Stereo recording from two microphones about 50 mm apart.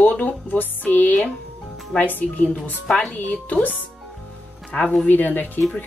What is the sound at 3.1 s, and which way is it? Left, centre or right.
Speech, left.